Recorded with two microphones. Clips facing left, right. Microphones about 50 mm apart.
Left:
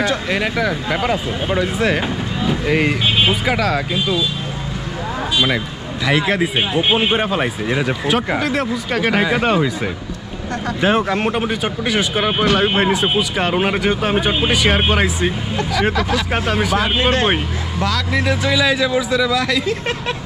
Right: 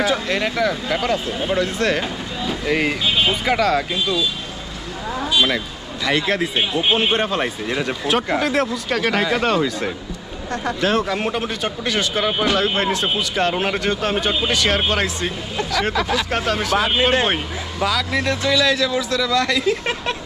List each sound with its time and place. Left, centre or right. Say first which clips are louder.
0.3 s speech: left 1 dB; centre
6.0 s speech: left 3 dB; centre
9.0 s speech: left 3 dB; centre
17.7 s speech: left 1 dB; centre
18.2 s speech: left 2 dB; centre